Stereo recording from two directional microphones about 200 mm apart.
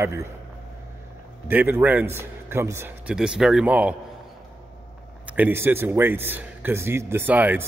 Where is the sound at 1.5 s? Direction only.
10° right (ahead or behind).